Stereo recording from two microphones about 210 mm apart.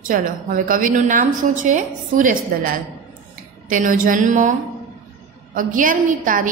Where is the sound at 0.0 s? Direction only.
40° right (ahead or behind).